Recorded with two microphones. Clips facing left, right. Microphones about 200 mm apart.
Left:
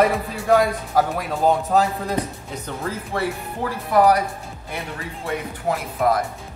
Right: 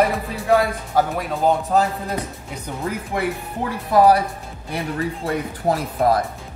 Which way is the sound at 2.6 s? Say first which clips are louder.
Right 2 dB; 20° right (ahead or behind).